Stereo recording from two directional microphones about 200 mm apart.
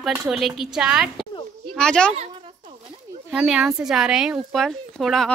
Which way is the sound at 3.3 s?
5° right (ahead or behind).